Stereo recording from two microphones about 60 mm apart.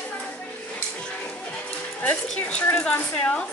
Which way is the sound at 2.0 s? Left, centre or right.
Left.